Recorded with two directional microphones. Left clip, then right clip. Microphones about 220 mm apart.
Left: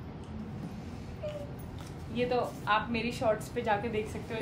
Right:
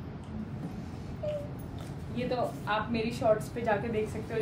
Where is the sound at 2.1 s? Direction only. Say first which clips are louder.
Left 1 dB; 20° left (ahead or behind).